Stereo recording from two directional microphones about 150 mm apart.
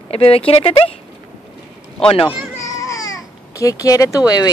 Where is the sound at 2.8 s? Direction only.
25° left (ahead or behind).